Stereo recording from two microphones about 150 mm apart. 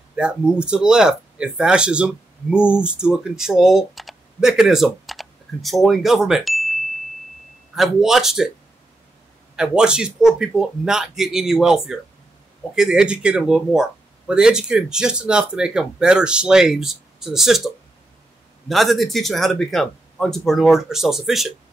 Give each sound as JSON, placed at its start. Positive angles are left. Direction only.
{"t": 0.1, "sound": "speech", "side_deg": -5}
{"t": 9.6, "sound": "speech", "side_deg": -5}